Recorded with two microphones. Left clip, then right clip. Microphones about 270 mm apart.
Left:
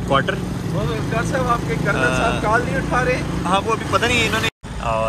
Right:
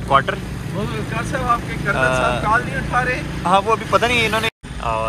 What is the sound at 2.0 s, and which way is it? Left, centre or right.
Speech, centre.